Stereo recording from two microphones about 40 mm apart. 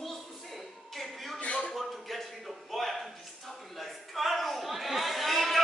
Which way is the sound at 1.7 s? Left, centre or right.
Centre.